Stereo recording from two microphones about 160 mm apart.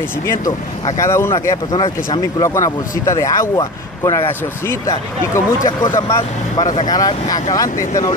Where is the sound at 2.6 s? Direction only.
20° left (ahead or behind).